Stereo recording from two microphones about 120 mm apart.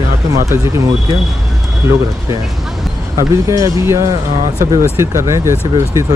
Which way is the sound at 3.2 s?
25° right (ahead or behind).